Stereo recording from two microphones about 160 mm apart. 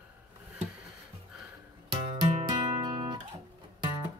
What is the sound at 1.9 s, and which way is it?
Music, 30° right (ahead or behind).